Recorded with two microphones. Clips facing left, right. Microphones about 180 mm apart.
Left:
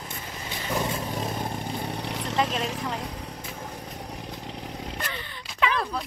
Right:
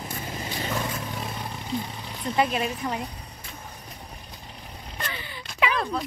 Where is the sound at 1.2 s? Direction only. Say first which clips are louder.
Left 4 dB; 45° left (ahead or behind).